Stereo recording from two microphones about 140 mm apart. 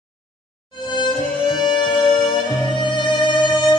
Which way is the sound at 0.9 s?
30° left (ahead or behind).